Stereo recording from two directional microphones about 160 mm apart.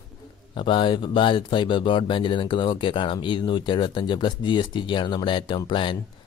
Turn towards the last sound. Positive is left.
turn(degrees=30)  # may be behind; listen again after turning